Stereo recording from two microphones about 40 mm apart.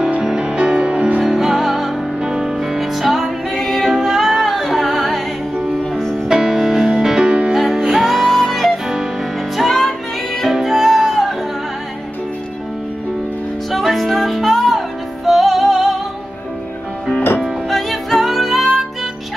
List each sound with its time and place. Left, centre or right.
0.2 s music: centre
1.2 s music: centre
2.2 s music: centre
2.5 s music: centre
5.9 s music: centre
6.2 s music: centre
7.2 s music: right
7.5 s music: centre
8.8 s music: centre
9.7 s music: centre
13.7 s music: centre
17.6 s music: centre